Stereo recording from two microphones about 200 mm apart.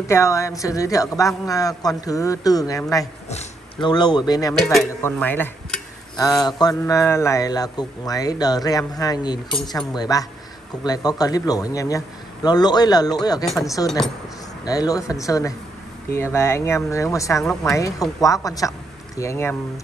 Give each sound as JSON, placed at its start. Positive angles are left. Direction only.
{"t": 0.1, "sound": "cutlery", "side_deg": 15}
{"t": 3.3, "sound": "a sound", "side_deg": 35}
{"t": 3.9, "sound": "speech", "side_deg": 20}
{"t": 5.0, "sound": "cutlery", "side_deg": 10}
{"t": 10.8, "sound": "speech", "side_deg": 20}
{"t": 13.6, "sound": "cutlery", "side_deg": 15}
{"t": 13.8, "sound": "speech", "side_deg": 0}
{"t": 14.6, "sound": "cutlery", "side_deg": 20}